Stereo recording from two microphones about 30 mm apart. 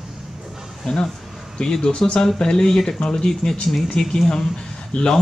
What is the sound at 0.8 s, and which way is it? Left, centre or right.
Speech, left.